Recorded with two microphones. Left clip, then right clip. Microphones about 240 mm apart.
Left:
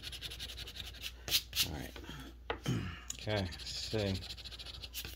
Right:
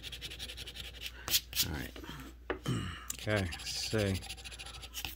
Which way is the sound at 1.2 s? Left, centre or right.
Right.